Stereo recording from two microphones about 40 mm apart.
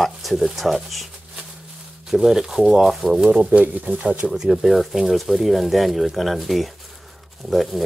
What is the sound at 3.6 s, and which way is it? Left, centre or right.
Speech, right.